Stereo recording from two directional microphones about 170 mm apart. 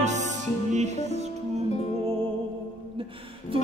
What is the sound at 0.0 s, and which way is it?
Music, 45° right (ahead or behind).